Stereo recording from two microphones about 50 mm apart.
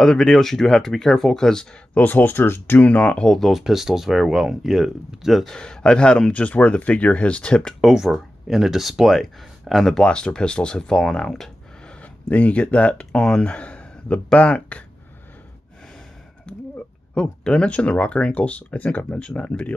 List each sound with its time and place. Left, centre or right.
0.0 s speech: centre
2.0 s speech: left
2.8 s speech: left
3.3 s speech: centre
3.6 s speech: centre
5.5 s speech: centre
7.8 s speech: centre
10.0 s speech: centre
12.0 s speech: left
16.5 s a sound: left
17.1 s speech: centre